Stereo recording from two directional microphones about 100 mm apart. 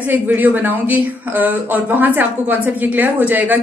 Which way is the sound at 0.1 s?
20° right (ahead or behind).